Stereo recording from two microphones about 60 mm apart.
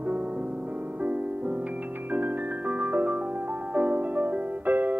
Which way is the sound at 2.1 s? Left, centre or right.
Right.